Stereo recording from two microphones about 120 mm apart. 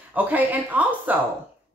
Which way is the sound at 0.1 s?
15° right (ahead or behind).